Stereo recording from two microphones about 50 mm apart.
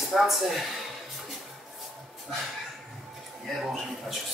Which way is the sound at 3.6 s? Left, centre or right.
Centre.